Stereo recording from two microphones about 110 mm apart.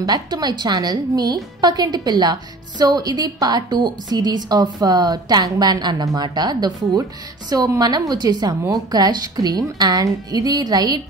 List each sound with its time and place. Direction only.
0.0 s a woman's voice: 40° right (ahead or behind)